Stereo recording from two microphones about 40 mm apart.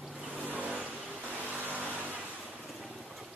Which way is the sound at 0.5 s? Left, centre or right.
Right.